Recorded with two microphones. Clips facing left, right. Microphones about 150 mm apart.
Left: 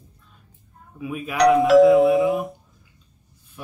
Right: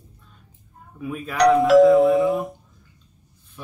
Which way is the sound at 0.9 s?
5° left (ahead or behind).